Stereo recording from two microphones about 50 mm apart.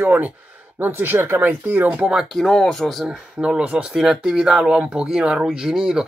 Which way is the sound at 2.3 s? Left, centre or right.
Centre.